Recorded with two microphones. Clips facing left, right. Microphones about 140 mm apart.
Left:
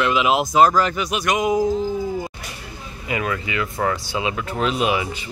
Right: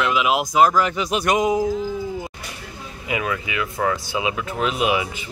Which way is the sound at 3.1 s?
10° right (ahead or behind).